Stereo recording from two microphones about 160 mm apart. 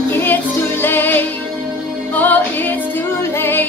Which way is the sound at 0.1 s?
10° left (ahead or behind).